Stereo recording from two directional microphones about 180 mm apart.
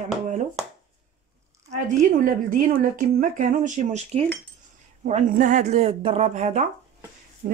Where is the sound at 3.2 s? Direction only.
45° right (ahead or behind).